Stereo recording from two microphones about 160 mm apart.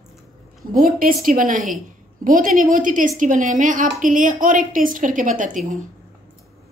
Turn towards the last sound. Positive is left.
turn(degrees=-55)  # may be behind; listen again after turning